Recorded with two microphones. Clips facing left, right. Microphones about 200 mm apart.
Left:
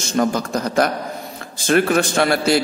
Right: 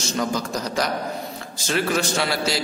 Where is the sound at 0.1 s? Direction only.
50° left (ahead or behind).